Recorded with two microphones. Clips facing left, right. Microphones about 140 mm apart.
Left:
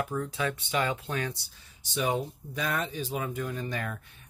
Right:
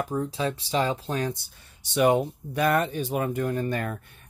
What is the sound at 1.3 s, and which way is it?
Speech, 60° right (ahead or behind).